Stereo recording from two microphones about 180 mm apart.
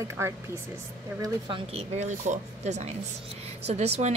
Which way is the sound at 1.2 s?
30° right (ahead or behind).